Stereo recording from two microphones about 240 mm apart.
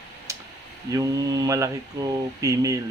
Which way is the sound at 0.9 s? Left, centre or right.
Centre.